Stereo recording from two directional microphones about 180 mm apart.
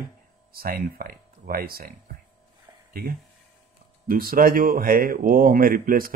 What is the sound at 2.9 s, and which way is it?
Speech, 55° right (ahead or behind).